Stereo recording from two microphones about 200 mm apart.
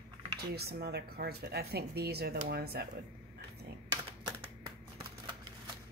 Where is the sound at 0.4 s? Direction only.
55° right (ahead or behind).